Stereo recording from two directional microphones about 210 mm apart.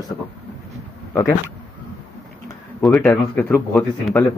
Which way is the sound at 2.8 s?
5° left (ahead or behind).